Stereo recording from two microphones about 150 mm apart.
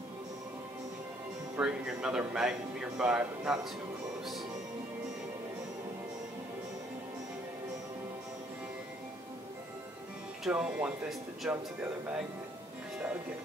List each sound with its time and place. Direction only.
1.6 s a man's voice: 5° right (ahead or behind)
4.2 s music: centre (ahead or behind)
10.4 s a man's voice: 5° right (ahead or behind)